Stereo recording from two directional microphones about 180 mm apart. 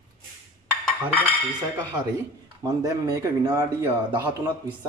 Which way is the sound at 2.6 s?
20° right (ahead or behind).